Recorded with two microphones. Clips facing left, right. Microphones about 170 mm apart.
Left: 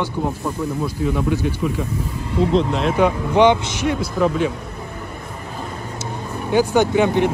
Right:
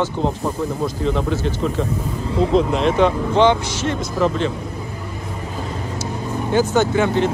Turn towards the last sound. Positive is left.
turn(degrees=15)  # may be behind; listen again after turning